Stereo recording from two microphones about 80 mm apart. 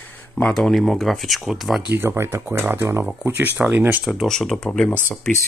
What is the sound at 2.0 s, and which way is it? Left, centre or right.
Speech, right.